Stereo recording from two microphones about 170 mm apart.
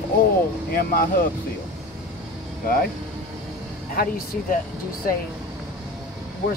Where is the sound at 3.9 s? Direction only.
60° left (ahead or behind).